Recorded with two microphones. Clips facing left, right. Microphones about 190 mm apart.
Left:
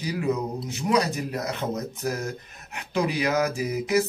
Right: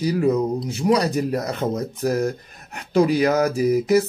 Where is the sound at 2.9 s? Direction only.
40° right (ahead or behind).